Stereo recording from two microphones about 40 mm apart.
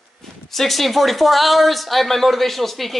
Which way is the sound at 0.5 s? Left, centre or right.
Centre.